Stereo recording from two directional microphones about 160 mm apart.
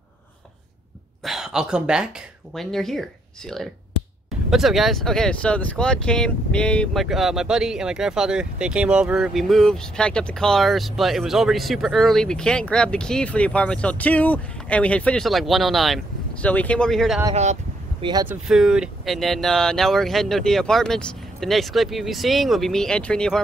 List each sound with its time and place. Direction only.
1.2 s speech: centre (ahead or behind)
17.3 s speech: 45° right (ahead or behind)
18.0 s speech: 30° right (ahead or behind)
18.5 s speech: 5° right (ahead or behind)